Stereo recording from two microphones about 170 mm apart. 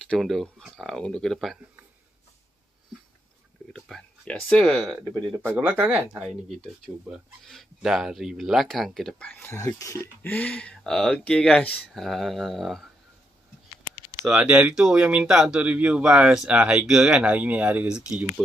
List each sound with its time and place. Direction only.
0.0 s speech: centre (ahead or behind)
3.7 s speech: 5° left (ahead or behind)
6.2 s speech: centre (ahead or behind)
14.2 s speech: 10° right (ahead or behind)